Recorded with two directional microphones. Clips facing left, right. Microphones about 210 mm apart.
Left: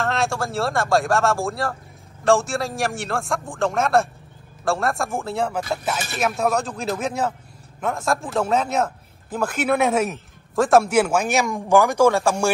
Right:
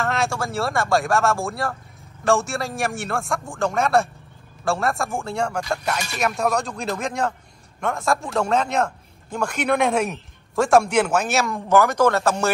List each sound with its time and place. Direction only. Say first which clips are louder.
0.0 s a man's voice: left 1 dB; centre (ahead or behind)